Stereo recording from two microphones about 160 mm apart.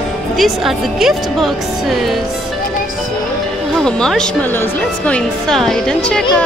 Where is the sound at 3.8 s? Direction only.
5° left (ahead or behind).